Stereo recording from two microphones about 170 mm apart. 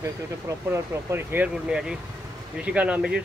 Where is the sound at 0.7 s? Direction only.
15° right (ahead or behind).